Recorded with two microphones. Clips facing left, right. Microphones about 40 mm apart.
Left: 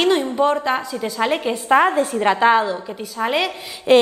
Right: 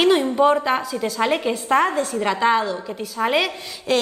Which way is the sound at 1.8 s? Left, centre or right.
Left.